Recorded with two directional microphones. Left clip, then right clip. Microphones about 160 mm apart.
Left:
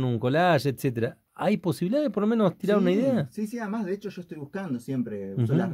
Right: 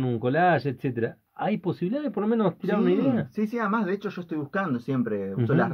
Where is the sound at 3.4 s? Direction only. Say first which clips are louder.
Right 6 dB; centre (ahead or behind).